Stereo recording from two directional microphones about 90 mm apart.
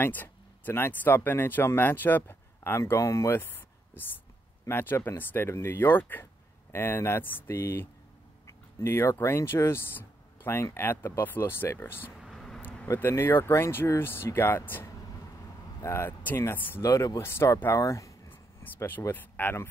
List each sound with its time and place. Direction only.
0.0 s speech: 20° left (ahead or behind)
3.3 s a sound: 20° left (ahead or behind)
4.6 s speech: 25° left (ahead or behind)
8.5 s a sound: 30° left (ahead or behind)
9.2 s speech: 30° left (ahead or behind)
12.2 s vehicle: centre (ahead or behind)
12.8 s speech: 35° left (ahead or behind)
16.8 s speech: 35° left (ahead or behind)
18.3 s speech: 25° left (ahead or behind)